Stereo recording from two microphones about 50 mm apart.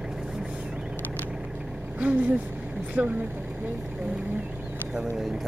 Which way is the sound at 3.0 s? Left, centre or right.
Right.